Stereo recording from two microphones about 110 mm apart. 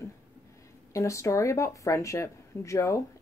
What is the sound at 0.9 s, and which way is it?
Speech, 30° left (ahead or behind).